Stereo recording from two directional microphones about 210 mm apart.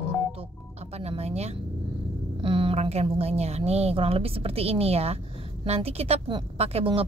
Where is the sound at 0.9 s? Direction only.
30° right (ahead or behind).